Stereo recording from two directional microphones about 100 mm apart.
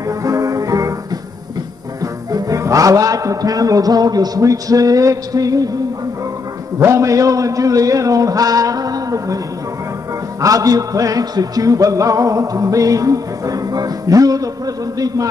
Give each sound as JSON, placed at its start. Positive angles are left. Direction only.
{"t": 0.2, "sound": "music", "side_deg": -35}
{"t": 2.3, "sound": "music", "side_deg": -35}
{"t": 6.8, "sound": "music", "side_deg": -30}
{"t": 10.4, "sound": "music", "side_deg": -35}